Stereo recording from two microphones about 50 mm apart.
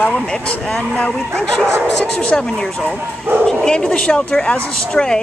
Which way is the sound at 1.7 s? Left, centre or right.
Right.